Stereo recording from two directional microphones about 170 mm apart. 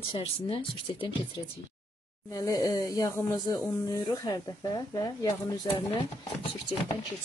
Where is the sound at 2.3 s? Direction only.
20° left (ahead or behind).